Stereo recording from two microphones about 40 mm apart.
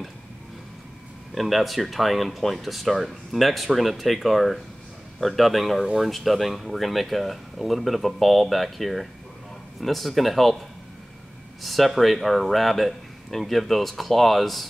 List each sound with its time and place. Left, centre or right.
1.3 s speech: centre
11.6 s speech: centre